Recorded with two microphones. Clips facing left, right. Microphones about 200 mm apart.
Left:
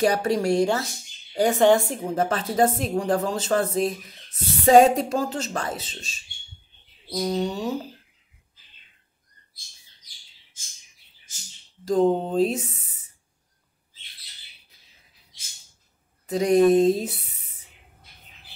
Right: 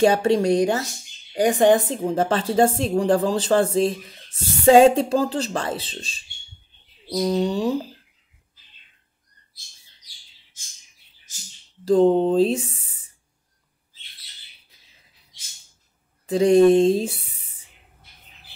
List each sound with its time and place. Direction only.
0.0 s a woman's voice: 25° right (ahead or behind)
7.2 s speech: 35° right (ahead or behind)
11.8 s speech: 30° right (ahead or behind)
16.3 s a woman's voice: 30° right (ahead or behind)